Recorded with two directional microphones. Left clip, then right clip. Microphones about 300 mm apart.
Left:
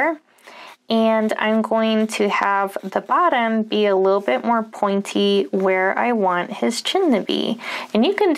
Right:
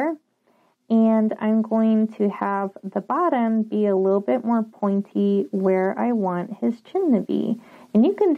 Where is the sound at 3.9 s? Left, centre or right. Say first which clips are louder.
Left 2 dB; left.